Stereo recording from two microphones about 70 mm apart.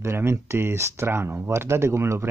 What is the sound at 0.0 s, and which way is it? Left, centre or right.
Speech, right.